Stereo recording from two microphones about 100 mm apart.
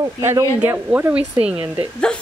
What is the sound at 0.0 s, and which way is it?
Speech, 30° right (ahead or behind).